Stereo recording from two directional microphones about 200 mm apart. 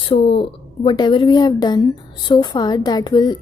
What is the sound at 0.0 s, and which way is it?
Speech, 30° left (ahead or behind).